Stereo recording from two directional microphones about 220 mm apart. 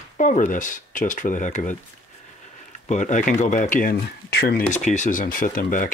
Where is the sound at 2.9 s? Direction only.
35° left (ahead or behind).